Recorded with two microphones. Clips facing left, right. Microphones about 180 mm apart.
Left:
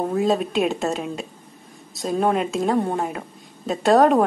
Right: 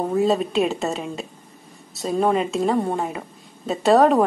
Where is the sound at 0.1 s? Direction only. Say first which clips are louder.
Right 3 dB; centre (ahead or behind).